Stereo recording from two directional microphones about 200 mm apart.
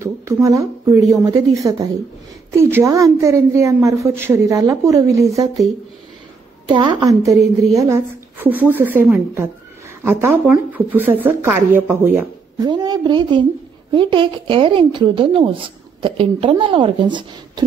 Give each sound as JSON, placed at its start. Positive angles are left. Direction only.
{"t": 0.0, "sound": "a woman's voice", "side_deg": -15}
{"t": 6.7, "sound": "a woman's voice", "side_deg": -20}
{"t": 12.6, "sound": "a woman's voice", "side_deg": -20}